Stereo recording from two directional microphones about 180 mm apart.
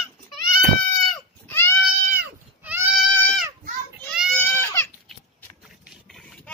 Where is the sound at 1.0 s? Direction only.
5° left (ahead or behind).